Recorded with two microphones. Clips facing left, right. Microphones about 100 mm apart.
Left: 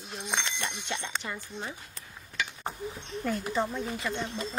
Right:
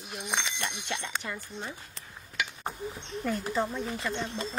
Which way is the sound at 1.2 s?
10° left (ahead or behind).